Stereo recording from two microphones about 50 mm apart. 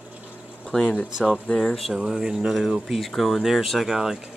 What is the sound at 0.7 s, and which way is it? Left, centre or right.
Speech, centre.